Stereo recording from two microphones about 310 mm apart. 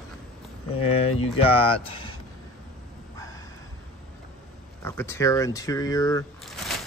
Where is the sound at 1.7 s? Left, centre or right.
Centre.